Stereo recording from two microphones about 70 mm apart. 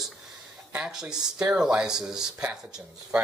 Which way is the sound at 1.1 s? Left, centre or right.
Right.